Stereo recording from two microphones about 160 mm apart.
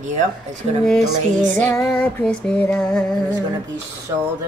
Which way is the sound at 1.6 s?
10° left (ahead or behind).